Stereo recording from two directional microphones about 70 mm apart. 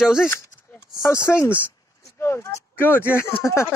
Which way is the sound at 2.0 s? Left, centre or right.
Left.